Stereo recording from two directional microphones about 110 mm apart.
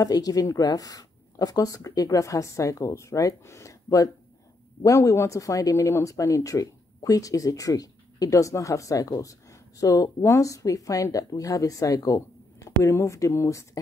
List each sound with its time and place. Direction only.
0.0 s speech: 35° left (ahead or behind)